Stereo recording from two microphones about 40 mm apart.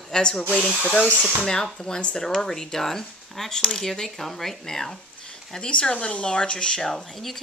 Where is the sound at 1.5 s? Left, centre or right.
Centre.